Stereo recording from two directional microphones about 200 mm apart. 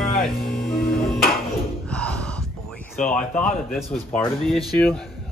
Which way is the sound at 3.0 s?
5° left (ahead or behind).